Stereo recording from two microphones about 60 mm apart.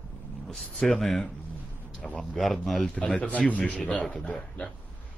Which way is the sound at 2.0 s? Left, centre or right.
Centre.